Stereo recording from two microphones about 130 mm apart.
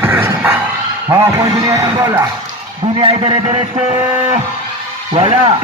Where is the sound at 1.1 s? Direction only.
25° right (ahead or behind).